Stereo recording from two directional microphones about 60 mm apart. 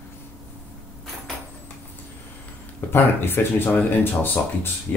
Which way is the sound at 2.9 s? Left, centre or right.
Left.